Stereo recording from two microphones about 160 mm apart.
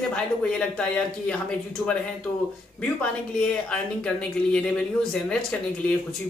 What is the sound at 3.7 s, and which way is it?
Speech, 5° left (ahead or behind).